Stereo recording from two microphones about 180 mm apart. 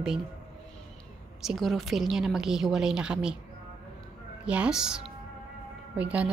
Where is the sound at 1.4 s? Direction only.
Centre (ahead or behind).